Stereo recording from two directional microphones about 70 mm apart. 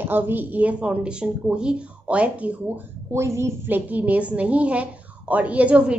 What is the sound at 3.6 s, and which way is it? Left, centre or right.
Speech, right.